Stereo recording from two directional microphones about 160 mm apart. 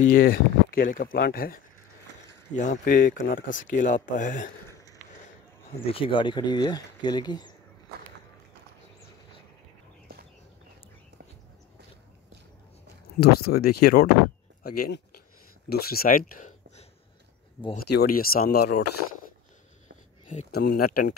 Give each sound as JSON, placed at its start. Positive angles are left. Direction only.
{"t": 0.0, "sound": "speech", "side_deg": 60}
{"t": 5.9, "sound": "speech", "side_deg": 35}
{"t": 13.2, "sound": "speech", "side_deg": 75}
{"t": 14.6, "sound": "a sound", "side_deg": 75}
{"t": 15.7, "sound": "speech", "side_deg": 70}
{"t": 17.7, "sound": "speech", "side_deg": 80}
{"t": 20.5, "sound": "speech", "side_deg": 75}